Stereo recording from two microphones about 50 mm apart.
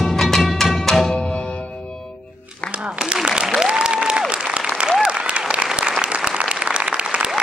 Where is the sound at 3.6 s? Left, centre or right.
Centre.